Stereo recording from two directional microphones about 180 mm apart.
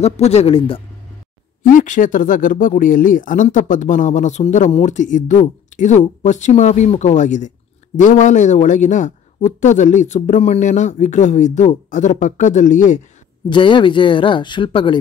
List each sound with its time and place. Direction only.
0.0 s speech: 35° left (ahead or behind)
1.6 s speech: 45° left (ahead or behind)
13.5 s speech: 25° left (ahead or behind)